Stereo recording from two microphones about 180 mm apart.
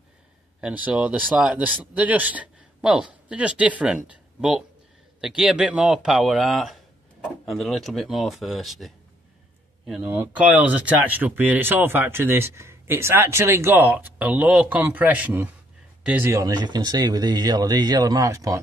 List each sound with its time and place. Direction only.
0.6 s speech: 5° right (ahead or behind)
16.3 s speech: 20° right (ahead or behind)